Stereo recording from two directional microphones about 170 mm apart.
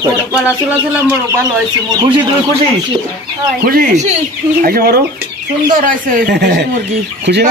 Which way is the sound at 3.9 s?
45° right (ahead or behind).